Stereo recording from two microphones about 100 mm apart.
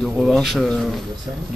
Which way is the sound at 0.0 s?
Centre (ahead or behind).